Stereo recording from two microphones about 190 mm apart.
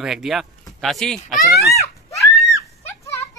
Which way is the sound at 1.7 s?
15° left (ahead or behind).